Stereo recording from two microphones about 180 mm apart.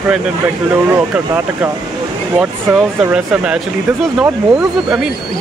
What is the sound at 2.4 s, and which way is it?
Speech, 5° right (ahead or behind).